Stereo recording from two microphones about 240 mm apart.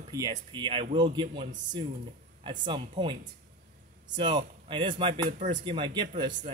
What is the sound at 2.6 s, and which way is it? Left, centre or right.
Speech, right.